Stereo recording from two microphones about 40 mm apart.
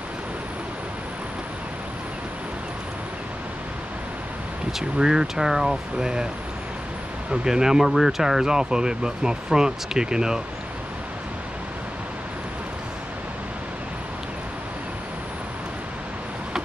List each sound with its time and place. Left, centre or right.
4.7 s speech: centre
7.2 s speech: centre